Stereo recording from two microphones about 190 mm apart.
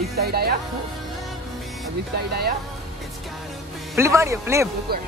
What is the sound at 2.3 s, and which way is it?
Speech, 55° right (ahead or behind).